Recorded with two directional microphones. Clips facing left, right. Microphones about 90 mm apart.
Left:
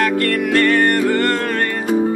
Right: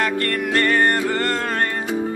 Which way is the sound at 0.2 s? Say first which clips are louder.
Left 5 dB; 25° right (ahead or behind).